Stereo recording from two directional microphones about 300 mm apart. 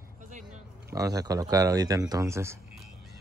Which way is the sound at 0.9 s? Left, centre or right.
Centre.